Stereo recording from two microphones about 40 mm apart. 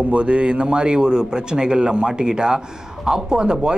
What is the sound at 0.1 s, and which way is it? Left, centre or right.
Speech, right.